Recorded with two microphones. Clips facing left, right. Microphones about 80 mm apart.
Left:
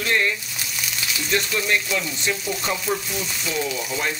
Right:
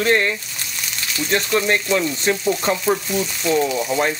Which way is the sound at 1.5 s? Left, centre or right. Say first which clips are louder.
Right 5 dB; right.